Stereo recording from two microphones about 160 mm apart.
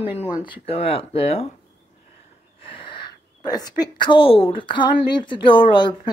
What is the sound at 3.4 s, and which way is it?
A woman's voice, 25° left (ahead or behind).